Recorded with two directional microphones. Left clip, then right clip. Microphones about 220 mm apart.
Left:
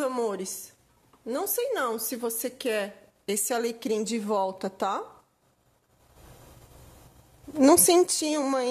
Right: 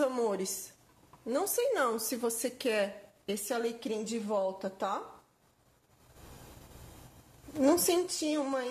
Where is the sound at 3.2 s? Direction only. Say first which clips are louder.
Left 5 dB; 40° left (ahead or behind).